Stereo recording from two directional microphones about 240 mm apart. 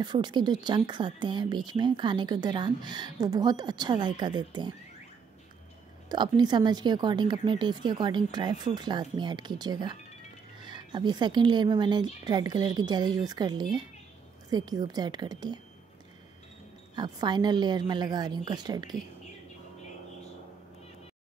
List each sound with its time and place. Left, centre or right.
0.0 s speech: centre
6.0 s speech: centre
16.9 s speech: centre